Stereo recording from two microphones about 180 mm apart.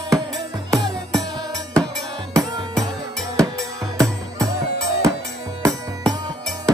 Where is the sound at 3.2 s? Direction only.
20° right (ahead or behind).